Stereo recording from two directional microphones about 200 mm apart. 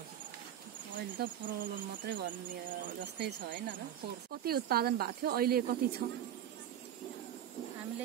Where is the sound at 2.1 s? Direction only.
55° right (ahead or behind).